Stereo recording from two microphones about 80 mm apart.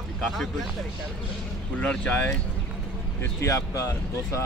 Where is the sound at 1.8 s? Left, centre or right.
Centre.